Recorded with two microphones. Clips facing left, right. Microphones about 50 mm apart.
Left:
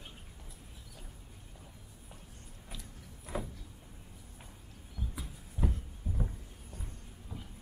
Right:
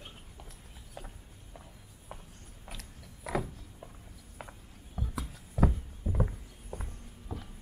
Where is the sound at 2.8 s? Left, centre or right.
Right.